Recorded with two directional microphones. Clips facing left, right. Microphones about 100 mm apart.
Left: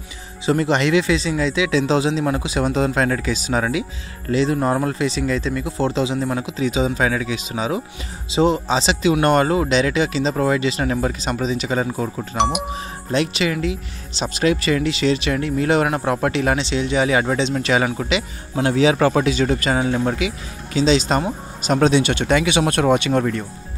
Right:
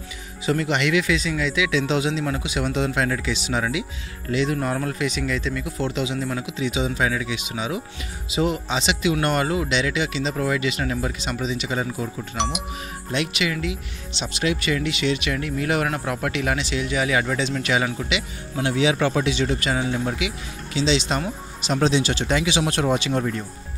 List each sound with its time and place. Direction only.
0.5 s speech: 35° left (ahead or behind)
7.3 s speech: 40° left (ahead or behind); by 12.6 s 60° left (ahead or behind)
12.7 s speech: 35° left (ahead or behind)
21.7 s speech: 55° left (ahead or behind)